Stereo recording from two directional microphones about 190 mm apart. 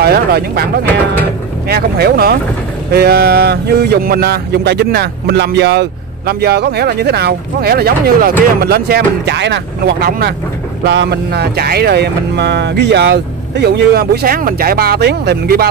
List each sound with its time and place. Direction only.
0.0 s speech: 55° right (ahead or behind)
1.7 s speech: 55° right (ahead or behind)